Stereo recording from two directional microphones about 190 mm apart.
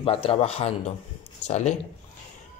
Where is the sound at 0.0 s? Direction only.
30° left (ahead or behind).